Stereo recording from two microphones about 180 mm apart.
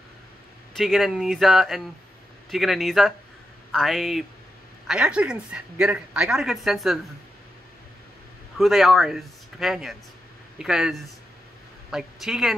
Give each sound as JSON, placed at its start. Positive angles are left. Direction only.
{"t": 0.7, "sound": "speech", "side_deg": 0}
{"t": 8.5, "sound": "speech", "side_deg": 0}